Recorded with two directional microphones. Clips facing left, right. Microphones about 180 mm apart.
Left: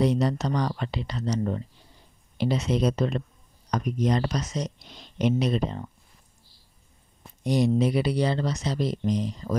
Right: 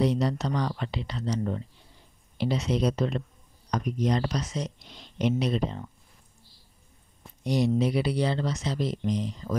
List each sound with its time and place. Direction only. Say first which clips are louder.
0.0 s speech: left 2 dB; 45° left (ahead or behind)
7.4 s speech: left 2 dB; 45° left (ahead or behind)